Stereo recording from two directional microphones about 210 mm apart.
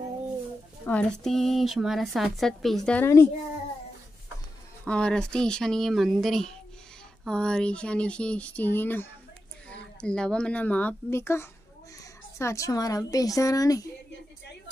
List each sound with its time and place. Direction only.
0.8 s speech: 5° left (ahead or behind)
4.8 s speech: 5° left (ahead or behind)